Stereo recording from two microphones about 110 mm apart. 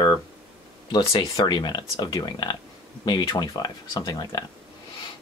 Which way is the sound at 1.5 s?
40° left (ahead or behind).